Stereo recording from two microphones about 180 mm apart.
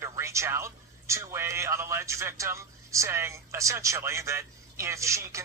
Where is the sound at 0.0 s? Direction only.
15° right (ahead or behind).